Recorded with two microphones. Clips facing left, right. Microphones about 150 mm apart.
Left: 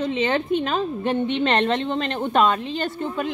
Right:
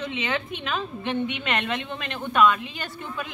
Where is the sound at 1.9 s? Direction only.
50° left (ahead or behind).